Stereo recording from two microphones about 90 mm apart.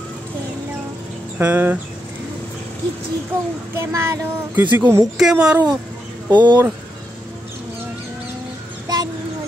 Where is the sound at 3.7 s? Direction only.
30° right (ahead or behind).